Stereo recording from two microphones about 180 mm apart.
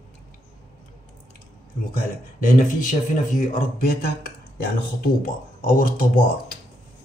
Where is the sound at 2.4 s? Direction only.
45° left (ahead or behind).